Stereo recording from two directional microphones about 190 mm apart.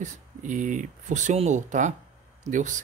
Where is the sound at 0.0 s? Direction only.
40° right (ahead or behind).